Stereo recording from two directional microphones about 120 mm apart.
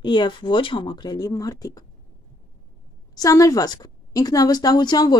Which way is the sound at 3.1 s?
30° left (ahead or behind).